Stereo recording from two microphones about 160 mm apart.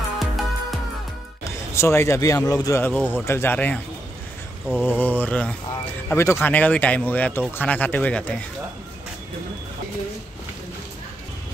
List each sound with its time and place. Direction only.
0.2 s music: centre (ahead or behind)
1.8 s speech: 15° left (ahead or behind)
4.8 s speech: 10° left (ahead or behind)